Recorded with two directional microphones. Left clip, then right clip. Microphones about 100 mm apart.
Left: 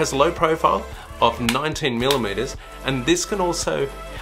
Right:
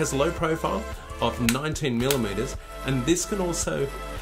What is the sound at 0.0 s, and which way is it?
Speech, 50° right (ahead or behind).